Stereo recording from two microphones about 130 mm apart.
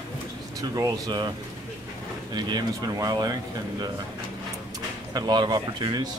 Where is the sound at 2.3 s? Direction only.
35° right (ahead or behind).